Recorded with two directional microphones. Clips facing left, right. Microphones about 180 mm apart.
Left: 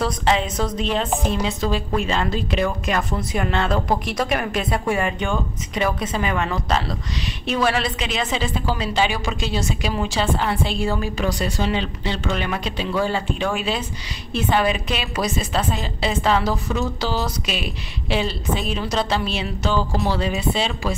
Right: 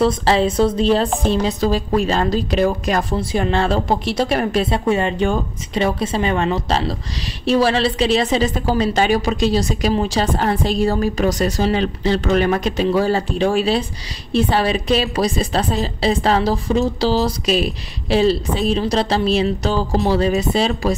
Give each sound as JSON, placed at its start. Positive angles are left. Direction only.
{"t": 0.0, "sound": "a woman's voice", "side_deg": -35}